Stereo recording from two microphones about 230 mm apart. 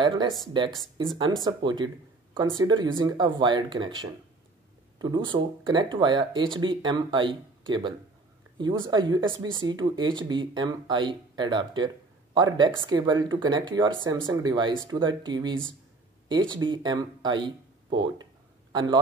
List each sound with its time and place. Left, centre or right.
0.0 s a man's voice: right